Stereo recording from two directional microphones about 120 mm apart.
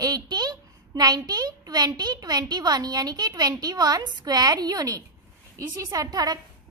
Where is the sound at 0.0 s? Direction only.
35° right (ahead or behind).